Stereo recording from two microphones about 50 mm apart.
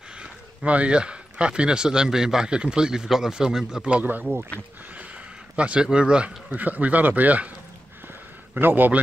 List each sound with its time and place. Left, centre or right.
0.2 s speech: right
4.0 s speech: right
5.6 s speech: right
8.5 s a man's voice: right